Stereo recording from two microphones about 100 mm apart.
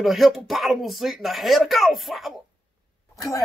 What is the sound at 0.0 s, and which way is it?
Speech, centre (ahead or behind).